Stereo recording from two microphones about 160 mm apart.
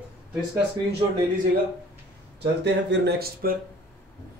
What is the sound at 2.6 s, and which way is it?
Speech, 90° right.